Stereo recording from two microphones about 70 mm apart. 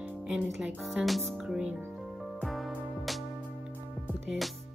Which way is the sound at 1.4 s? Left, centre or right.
Centre.